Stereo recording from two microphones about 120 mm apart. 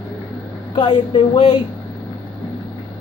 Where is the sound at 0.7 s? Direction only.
40° left (ahead or behind).